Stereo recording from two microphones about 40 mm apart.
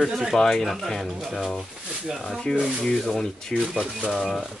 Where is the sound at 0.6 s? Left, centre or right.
Centre.